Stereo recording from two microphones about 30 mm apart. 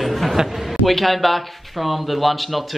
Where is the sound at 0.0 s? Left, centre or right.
Centre.